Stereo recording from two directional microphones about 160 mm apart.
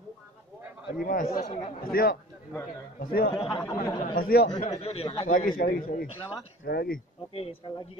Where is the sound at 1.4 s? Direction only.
40° left (ahead or behind).